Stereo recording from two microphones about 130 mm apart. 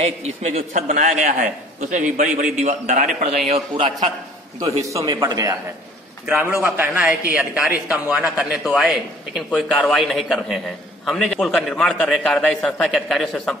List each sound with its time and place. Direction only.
0.0 s a man's voice: 55° right (ahead or behind)
0.8 s a man's voice: 80° right
4.8 s a man's voice: 30° right (ahead or behind); by 13.6 s 5° left (ahead or behind)